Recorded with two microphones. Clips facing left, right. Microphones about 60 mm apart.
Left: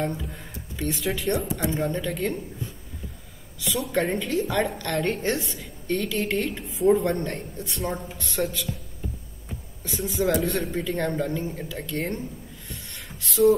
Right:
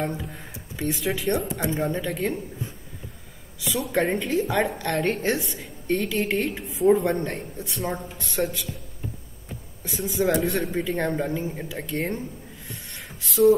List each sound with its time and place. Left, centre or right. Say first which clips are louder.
0.0 s speech: even; centre
0.9 s a woman's voice: right 1 dB; centre
3.8 s a woman's voice: right 2 dB; centre
9.8 s a woman's voice: right 1 dB; centre
12.9 s a sound: right 1 dB; centre